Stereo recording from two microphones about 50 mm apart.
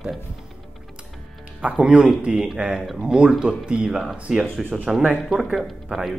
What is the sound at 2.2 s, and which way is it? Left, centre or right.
Speech, centre.